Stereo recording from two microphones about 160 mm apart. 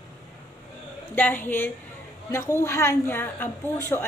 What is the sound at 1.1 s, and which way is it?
A woman's voice, 10° left (ahead or behind).